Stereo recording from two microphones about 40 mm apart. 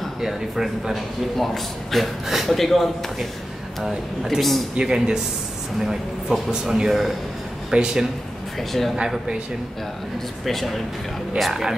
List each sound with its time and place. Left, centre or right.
0.2 s a man's voice: centre
1.3 s speech: centre
4.7 s a man's voice: centre
7.7 s a man's voice: centre
8.5 s speech: centre
10.4 s speech: centre